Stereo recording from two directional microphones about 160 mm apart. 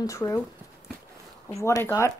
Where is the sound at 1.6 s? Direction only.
20° left (ahead or behind).